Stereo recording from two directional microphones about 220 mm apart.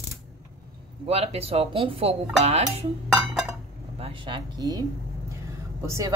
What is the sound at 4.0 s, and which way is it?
A woman's voice, 25° right (ahead or behind).